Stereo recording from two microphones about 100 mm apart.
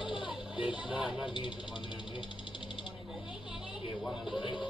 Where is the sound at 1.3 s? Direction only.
55° left (ahead or behind).